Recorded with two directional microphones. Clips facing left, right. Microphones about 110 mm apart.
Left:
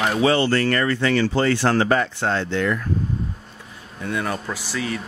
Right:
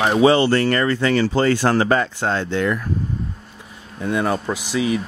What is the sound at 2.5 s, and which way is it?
Speech, 25° right (ahead or behind).